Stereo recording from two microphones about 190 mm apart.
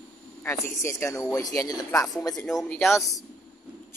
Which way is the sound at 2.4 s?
Centre (ahead or behind).